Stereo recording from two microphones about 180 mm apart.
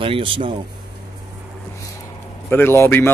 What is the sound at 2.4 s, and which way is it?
Speech, 10° left (ahead or behind).